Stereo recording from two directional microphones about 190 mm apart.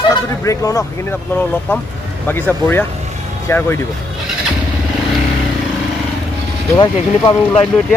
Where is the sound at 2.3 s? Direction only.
10° left (ahead or behind).